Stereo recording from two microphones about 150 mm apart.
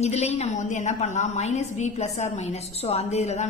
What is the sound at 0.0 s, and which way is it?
A woman's voice, 45° left (ahead or behind).